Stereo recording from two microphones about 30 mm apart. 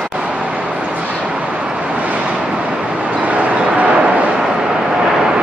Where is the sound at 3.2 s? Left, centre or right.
Right.